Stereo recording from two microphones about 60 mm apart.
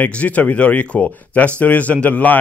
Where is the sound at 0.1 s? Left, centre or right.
Left.